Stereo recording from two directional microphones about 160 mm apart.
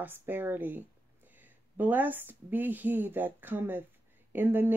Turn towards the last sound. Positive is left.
turn(degrees=-10)  # may be behind; listen again after turning